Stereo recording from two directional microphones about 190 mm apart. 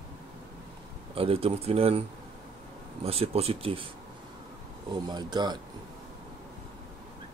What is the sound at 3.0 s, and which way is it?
Speech, 30° right (ahead or behind).